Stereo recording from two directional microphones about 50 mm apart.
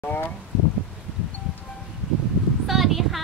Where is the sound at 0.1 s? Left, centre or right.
Left.